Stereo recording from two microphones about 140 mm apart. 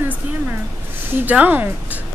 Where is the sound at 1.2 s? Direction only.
10° right (ahead or behind).